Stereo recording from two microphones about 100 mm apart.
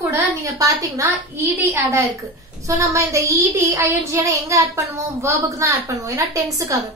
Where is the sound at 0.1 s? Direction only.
35° right (ahead or behind).